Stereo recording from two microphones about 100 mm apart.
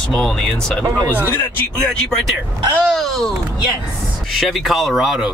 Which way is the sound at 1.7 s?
5° left (ahead or behind).